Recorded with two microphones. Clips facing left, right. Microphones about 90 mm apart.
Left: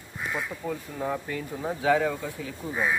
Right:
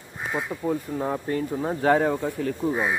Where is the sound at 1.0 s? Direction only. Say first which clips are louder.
Right 4 dB; 40° right (ahead or behind).